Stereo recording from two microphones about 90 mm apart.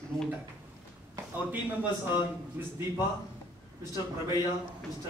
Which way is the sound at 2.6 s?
25° right (ahead or behind).